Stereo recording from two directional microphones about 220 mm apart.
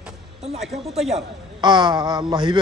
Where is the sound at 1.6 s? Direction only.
20° right (ahead or behind).